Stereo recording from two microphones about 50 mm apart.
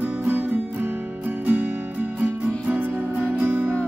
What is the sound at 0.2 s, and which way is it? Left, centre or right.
Music, right.